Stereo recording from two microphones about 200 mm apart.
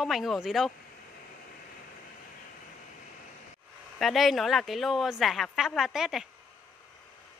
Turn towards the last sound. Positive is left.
turn(degrees=0)  # may be behind; listen again after turning